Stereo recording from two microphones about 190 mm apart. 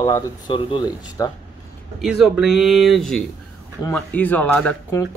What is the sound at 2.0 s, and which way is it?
Speech, 5° right (ahead or behind).